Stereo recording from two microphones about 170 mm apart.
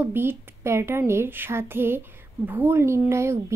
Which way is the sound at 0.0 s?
10° right (ahead or behind).